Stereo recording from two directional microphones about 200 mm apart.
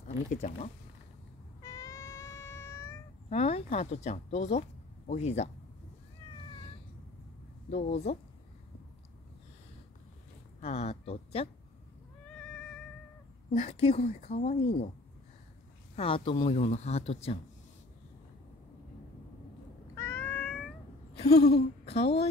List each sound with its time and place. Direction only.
0.3 s a woman's voice: 35° left (ahead or behind)
1.6 s cat: 15° left (ahead or behind)
3.3 s speech: 30° left (ahead or behind)
7.7 s a woman's voice: 30° left (ahead or behind)
10.6 s a woman's voice: 30° left (ahead or behind)
12.4 s cat: 5° left (ahead or behind)
13.5 s a woman's voice: 35° left (ahead or behind)
16.0 s a woman's voice: 25° left (ahead or behind)
20.0 s cat: 10° left (ahead or behind)
21.3 s a sound: 50° left (ahead or behind)